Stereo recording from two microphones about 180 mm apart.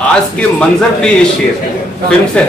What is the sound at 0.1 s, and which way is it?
A man's voice, 5° left (ahead or behind).